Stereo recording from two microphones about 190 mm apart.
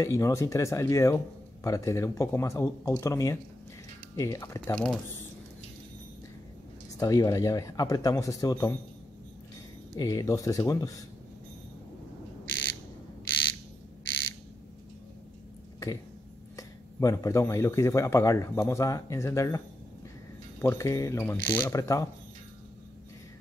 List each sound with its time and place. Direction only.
0.0 s speech: 15° left (ahead or behind)
4.6 s speech: 5° left (ahead or behind)
7.0 s speech: 20° left (ahead or behind)
9.9 s speech: 20° left (ahead or behind)
16.5 s speech: 15° left (ahead or behind)